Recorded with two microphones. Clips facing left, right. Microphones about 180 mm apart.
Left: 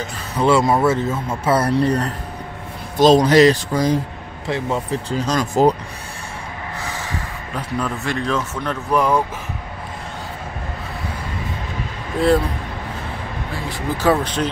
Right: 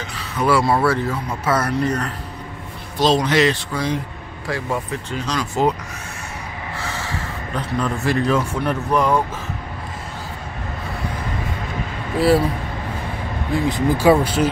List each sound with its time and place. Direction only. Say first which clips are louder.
0.4 s speech: left 2 dB; 20° left (ahead or behind); by 4.0 s 40° left (ahead or behind)
4.5 s speech: left 2 dB; 20° left (ahead or behind)
5.1 s speech: left 4 dB; 45° left (ahead or behind)
6.8 s snort: right 1 dB; 15° left (ahead or behind)
7.5 s a man's voice: right 1 dB; centre (ahead or behind)
8.9 s a man's voice: left 1 dB; 5° left (ahead or behind)
13.7 s speech: right 3 dB; 15° right (ahead or behind)